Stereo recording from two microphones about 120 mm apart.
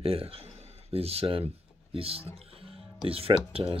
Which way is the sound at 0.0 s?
50° right (ahead or behind).